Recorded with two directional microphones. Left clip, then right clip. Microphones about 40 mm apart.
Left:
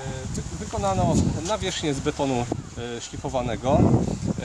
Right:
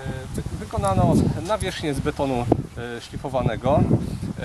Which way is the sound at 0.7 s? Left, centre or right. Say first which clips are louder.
Right 2 dB; centre.